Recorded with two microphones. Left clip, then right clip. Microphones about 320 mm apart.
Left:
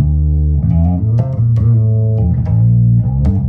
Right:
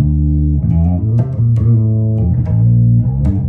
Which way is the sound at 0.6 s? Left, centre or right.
Left.